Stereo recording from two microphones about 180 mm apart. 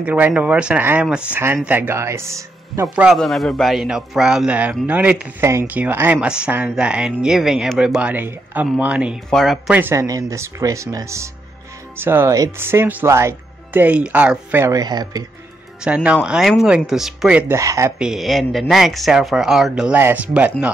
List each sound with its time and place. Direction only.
0.0 s speech: 5° right (ahead or behind)
3.1 s speech: centre (ahead or behind)
9.8 s speech: 15° right (ahead or behind)
15.8 s speech: 5° right (ahead or behind)
17.9 s speech: 5° right (ahead or behind)